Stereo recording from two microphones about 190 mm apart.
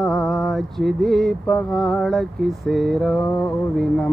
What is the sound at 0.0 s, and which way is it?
Speech, centre (ahead or behind).